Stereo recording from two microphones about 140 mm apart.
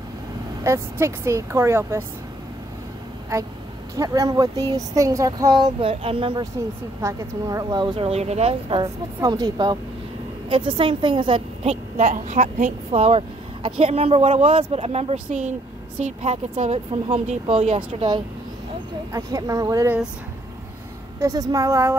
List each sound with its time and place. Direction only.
0.7 s speech: 20° right (ahead or behind)
3.9 s speech: 25° right (ahead or behind)
5.8 s speech: 40° right (ahead or behind)
7.0 s speech: 20° right (ahead or behind)
8.1 s a woman's voice: 50° right (ahead or behind)
8.8 s a woman's voice: 25° right (ahead or behind)
19.1 s speech: 25° right (ahead or behind)
21.2 s speech: 25° right (ahead or behind)